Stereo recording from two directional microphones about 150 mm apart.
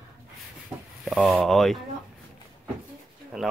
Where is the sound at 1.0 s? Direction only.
5° right (ahead or behind).